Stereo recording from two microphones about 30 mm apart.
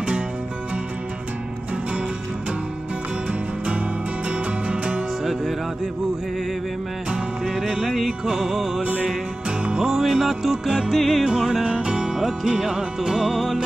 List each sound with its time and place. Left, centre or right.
4.6 s music: right
7.5 s music: centre
10.5 s music: right
11.0 s music: centre
11.2 s music: right
12.2 s music: centre